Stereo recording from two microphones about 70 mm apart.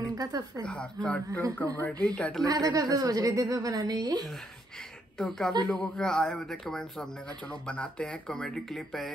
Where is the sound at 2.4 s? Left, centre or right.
Right.